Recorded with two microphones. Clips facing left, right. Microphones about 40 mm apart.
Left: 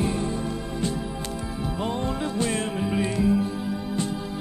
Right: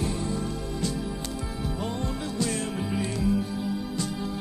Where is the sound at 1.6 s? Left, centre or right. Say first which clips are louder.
Left 4 dB; left.